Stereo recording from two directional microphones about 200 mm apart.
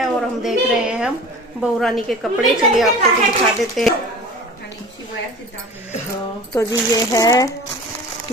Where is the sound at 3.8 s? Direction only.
Centre (ahead or behind).